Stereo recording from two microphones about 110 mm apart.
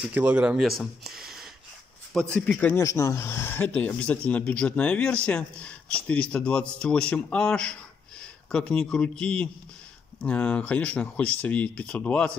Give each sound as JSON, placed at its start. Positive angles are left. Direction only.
{"t": 0.1, "sound": "a man's voice", "side_deg": -15}
{"t": 0.6, "sound": "a sound", "side_deg": 0}
{"t": 2.1, "sound": "speech", "side_deg": 10}
{"t": 2.8, "sound": "speech", "side_deg": 30}